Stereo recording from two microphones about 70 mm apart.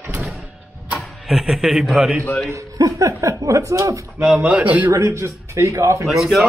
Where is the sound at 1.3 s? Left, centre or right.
Centre.